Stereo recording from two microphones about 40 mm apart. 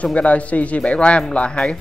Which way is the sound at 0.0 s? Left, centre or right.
Left.